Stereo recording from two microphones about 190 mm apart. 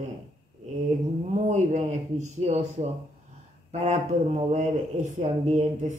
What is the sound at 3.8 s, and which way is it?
Speech, 35° right (ahead or behind).